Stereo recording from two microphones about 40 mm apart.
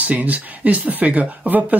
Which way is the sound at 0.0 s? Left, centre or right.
Right.